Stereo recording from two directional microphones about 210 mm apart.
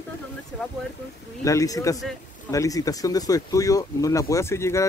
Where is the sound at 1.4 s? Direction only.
15° left (ahead or behind).